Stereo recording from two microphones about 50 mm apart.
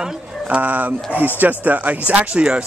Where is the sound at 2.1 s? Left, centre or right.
Right.